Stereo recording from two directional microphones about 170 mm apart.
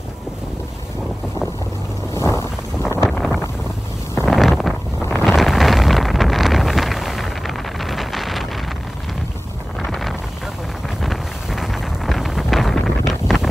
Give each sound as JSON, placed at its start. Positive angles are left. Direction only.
{"t": 2.1, "sound": "wind", "side_deg": 15}
{"t": 3.1, "sound": "wind noise", "side_deg": 0}
{"t": 9.8, "sound": "wind noise", "side_deg": 0}